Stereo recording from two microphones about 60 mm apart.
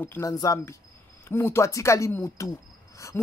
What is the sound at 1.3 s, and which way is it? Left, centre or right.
Speech, left.